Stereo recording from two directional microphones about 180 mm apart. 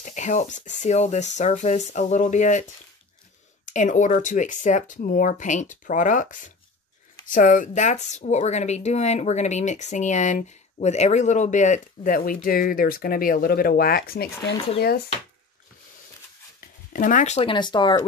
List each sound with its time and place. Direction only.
0.0 s speech: 40° left (ahead or behind)
3.6 s speech: 45° left (ahead or behind)
16.9 s speech: 45° left (ahead or behind); by 18.0 s 25° left (ahead or behind)